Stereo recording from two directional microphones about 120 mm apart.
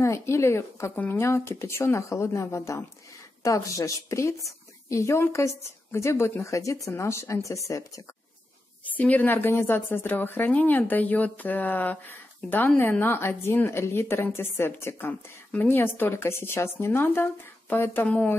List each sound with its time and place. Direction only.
0.0 s a woman's voice: 25° left (ahead or behind)
8.9 s a woman's voice: 15° left (ahead or behind)